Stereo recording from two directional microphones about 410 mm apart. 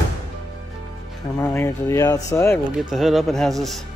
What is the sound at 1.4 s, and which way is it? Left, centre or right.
Speech, centre.